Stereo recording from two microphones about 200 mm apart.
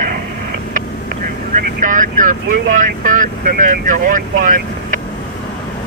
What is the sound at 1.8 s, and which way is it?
Vehicle, 40° right (ahead or behind).